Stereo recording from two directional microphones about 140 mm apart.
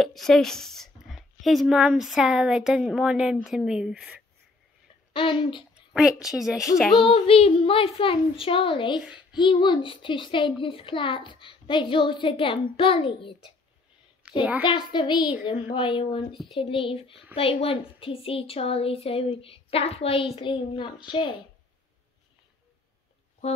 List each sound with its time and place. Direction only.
0.0 s speech: centre (ahead or behind)
5.1 s a child's voice: 35° left (ahead or behind)
5.8 s a woman's voice: 5° right (ahead or behind)
7.0 s a child's voice: 40° left (ahead or behind)
14.4 s a child's voice: 10° right (ahead or behind)
14.7 s a child's voice: 35° left (ahead or behind)